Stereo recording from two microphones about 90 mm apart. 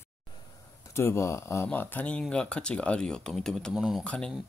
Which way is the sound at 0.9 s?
30° left (ahead or behind).